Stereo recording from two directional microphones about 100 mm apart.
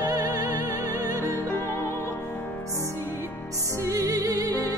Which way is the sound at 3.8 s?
30° right (ahead or behind).